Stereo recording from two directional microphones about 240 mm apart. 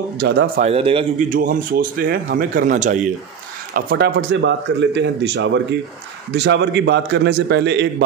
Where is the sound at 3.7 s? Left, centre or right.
Right.